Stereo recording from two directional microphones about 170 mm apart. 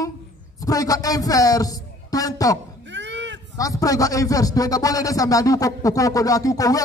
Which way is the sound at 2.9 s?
90° right.